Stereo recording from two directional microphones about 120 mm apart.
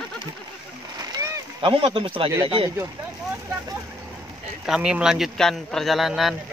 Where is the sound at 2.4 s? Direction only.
45° right (ahead or behind).